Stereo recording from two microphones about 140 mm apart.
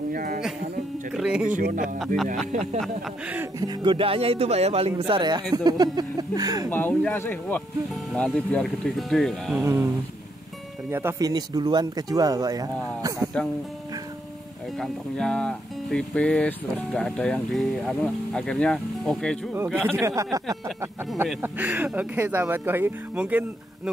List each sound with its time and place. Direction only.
0.1 s music: 70° right (ahead or behind)
1.1 s speech: 5° right (ahead or behind)
1.5 s speech: 70° right (ahead or behind)
2.5 s speech: 55° right (ahead or behind)
3.5 s speech: 30° right (ahead or behind)
6.7 s speech: 15° left (ahead or behind)
7.9 s speech: 5° left (ahead or behind)
9.6 s speech: 20° right (ahead or behind)
10.9 s speech: 20° right (ahead or behind)
14.8 s speech: 5° left (ahead or behind)
19.5 s speech: 15° right (ahead or behind)
21.4 s speech: 15° right (ahead or behind)